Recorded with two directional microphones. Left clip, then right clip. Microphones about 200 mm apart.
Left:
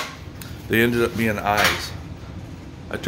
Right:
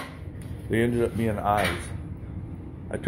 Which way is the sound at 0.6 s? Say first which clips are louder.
Left 6 dB; 25° left (ahead or behind).